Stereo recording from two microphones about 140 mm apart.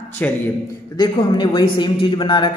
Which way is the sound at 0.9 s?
30° left (ahead or behind).